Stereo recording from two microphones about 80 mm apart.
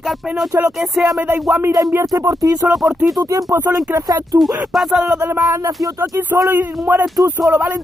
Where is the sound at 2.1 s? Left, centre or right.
Right.